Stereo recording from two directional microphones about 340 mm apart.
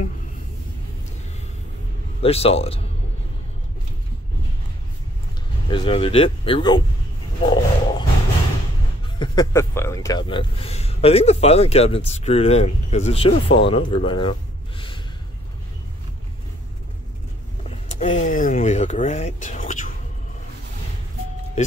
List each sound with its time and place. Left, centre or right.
2.2 s speech: centre
5.7 s speech: centre
7.4 s roaring cats: centre
9.2 s speech: centre
17.6 s speech: left